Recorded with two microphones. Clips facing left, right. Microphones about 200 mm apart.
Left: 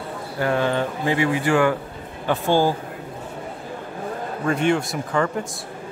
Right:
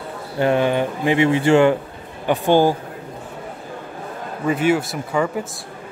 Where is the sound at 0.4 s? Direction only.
20° right (ahead or behind).